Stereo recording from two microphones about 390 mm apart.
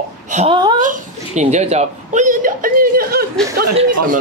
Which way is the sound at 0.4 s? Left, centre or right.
Centre.